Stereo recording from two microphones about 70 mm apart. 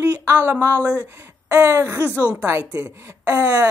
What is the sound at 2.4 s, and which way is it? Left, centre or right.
A woman's voice, right.